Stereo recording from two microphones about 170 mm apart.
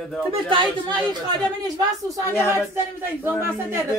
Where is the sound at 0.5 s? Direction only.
25° right (ahead or behind).